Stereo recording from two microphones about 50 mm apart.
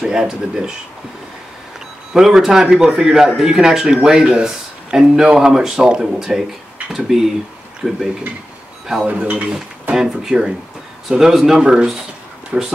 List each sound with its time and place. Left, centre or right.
0.0 s speech: centre
2.1 s speech: centre
9.0 s speech: right
9.9 s speech: centre